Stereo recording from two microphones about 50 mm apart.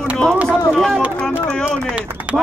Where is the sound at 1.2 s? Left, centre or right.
Centre.